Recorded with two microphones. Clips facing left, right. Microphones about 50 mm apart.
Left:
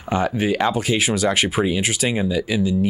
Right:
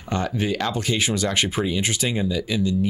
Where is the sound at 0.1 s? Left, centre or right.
Centre.